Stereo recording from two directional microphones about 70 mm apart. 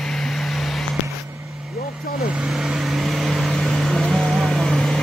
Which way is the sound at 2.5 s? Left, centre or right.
Centre.